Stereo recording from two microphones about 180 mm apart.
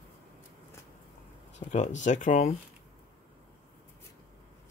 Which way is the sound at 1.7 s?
40° left (ahead or behind).